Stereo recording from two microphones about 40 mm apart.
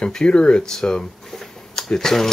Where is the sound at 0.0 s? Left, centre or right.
Left.